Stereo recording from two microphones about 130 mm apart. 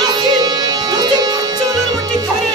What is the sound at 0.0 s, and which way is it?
Music, 30° right (ahead or behind).